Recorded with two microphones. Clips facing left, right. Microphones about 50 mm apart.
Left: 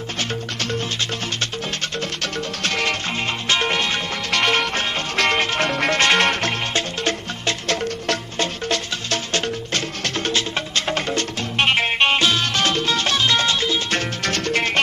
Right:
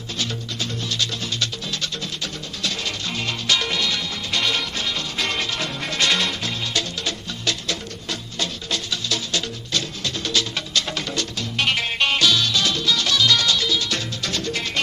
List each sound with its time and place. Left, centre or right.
2.2 s music: left
3.4 s music: left
4.3 s music: left
6.7 s music: left
7.6 s music: left
10.3 s music: left